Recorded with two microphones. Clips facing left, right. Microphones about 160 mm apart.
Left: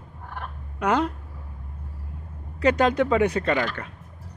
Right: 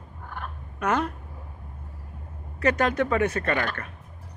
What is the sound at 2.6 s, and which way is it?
Speech, 15° left (ahead or behind).